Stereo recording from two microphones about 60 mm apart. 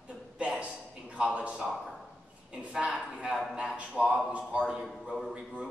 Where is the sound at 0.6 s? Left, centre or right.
Centre.